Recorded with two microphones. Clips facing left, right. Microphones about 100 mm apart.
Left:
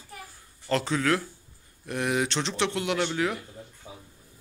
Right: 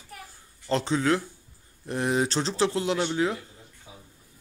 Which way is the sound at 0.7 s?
25° right (ahead or behind).